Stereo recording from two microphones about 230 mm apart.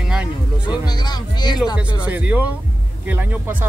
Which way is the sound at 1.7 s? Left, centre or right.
Centre.